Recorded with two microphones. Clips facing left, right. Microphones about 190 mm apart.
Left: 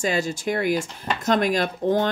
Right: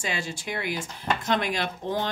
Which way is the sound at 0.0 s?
40° left (ahead or behind).